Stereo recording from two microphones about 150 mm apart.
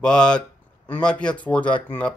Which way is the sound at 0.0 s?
5° left (ahead or behind).